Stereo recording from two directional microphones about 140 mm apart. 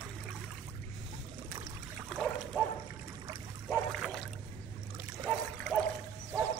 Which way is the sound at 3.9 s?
Centre (ahead or behind).